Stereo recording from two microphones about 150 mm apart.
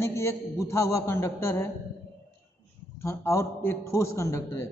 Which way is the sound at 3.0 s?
20° left (ahead or behind).